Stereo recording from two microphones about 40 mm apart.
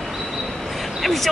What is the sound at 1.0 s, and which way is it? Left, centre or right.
Speech, centre.